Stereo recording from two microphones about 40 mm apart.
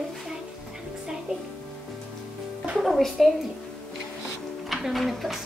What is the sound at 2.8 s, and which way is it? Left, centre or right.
Music, centre.